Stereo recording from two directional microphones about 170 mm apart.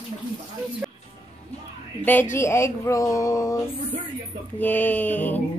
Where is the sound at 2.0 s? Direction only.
10° left (ahead or behind).